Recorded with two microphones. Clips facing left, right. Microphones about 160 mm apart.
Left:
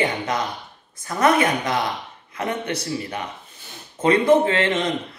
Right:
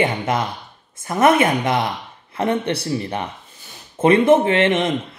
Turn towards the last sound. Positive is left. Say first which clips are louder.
# right 3 dB
turn(degrees=-25)  # may be behind; listen again after turning